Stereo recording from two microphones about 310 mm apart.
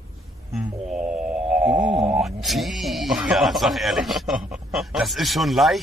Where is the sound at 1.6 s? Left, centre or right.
Centre.